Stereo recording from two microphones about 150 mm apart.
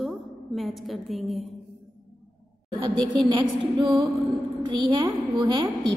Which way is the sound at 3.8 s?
35° right (ahead or behind).